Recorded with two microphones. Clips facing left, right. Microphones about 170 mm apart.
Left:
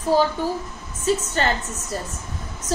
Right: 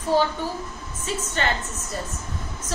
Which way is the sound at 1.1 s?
35° left (ahead or behind).